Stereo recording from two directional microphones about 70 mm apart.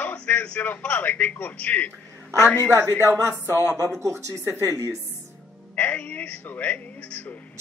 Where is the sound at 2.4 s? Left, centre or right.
Left.